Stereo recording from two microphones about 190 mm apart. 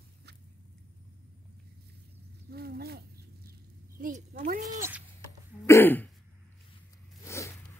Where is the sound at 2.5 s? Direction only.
55° right (ahead or behind).